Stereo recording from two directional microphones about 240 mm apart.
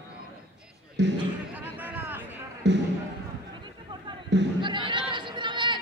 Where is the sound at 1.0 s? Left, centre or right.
Right.